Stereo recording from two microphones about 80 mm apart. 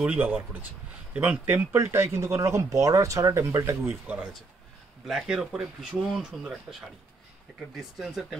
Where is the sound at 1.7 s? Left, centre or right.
Right.